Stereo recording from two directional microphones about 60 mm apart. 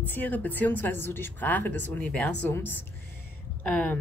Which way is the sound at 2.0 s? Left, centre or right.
Left.